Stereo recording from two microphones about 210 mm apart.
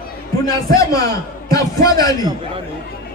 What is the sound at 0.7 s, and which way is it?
A man's voice, 15° left (ahead or behind).